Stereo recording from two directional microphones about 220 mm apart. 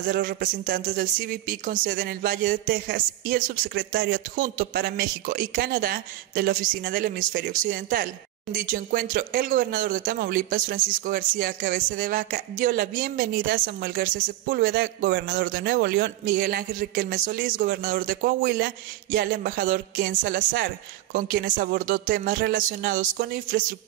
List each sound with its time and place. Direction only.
0.0 s speech: 40° right (ahead or behind)